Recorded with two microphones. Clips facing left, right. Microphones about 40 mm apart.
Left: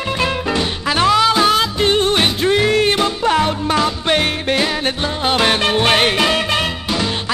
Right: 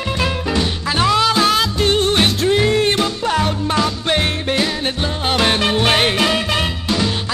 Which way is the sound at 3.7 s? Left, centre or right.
Centre.